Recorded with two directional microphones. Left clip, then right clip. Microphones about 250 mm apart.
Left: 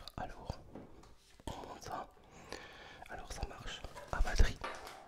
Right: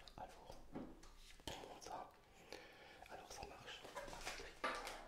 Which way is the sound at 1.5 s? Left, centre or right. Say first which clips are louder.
Left 7 dB; left.